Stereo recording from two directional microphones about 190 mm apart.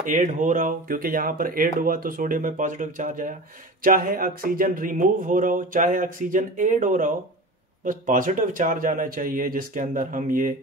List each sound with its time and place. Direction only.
0.0 s speech: 45° right (ahead or behind)